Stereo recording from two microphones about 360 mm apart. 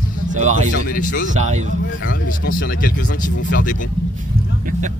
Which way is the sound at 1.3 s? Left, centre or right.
Centre.